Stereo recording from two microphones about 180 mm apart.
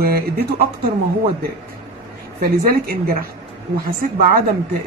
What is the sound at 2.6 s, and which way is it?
A man's voice, 55° right (ahead or behind).